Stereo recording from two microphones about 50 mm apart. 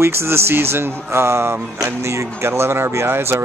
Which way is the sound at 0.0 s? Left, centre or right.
Right.